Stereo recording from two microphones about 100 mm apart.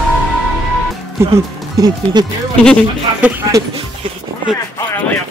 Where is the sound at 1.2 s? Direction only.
25° right (ahead or behind).